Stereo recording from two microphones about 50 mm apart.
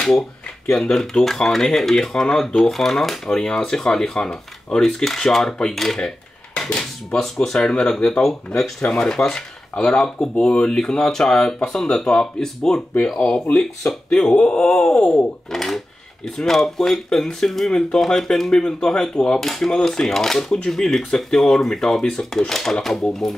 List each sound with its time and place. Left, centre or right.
0.7 s speech: centre
5.9 s dishes: centre
6.7 s speech: centre
13.6 s speech: centre
14.4 s speech: left
15.5 s a sound: centre
16.3 s speech: centre